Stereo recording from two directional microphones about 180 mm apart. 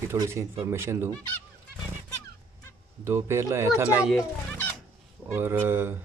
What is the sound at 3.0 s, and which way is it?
Speech, 15° right (ahead or behind).